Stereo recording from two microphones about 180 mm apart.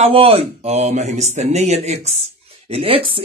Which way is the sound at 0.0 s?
30° right (ahead or behind).